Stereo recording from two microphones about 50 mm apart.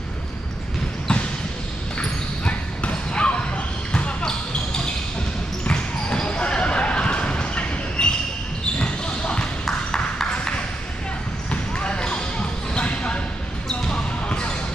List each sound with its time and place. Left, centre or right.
2.0 s basketball bounce: left
5.7 s basketball bounce: centre
9.7 s ping: centre
11.8 s basketball bounce: left